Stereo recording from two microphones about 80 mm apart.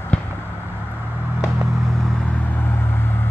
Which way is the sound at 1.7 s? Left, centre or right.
Centre.